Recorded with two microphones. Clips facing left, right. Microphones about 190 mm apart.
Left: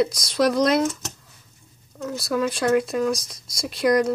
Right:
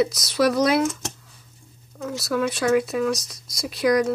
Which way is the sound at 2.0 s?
Centre (ahead or behind).